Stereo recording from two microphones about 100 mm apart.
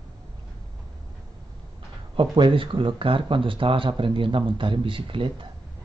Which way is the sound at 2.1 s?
55° right (ahead or behind).